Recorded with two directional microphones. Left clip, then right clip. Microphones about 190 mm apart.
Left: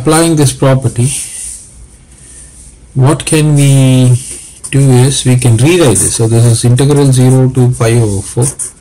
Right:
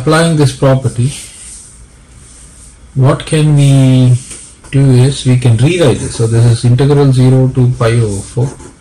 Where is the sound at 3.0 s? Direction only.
45° left (ahead or behind).